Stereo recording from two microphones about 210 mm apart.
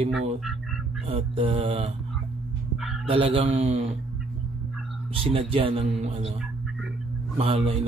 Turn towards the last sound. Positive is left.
turn(degrees=-30)  # may be behind; listen again after turning